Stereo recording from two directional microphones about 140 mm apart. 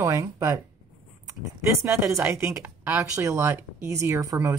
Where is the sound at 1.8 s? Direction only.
20° right (ahead or behind).